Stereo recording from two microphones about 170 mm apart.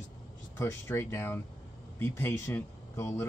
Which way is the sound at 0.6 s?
15° left (ahead or behind).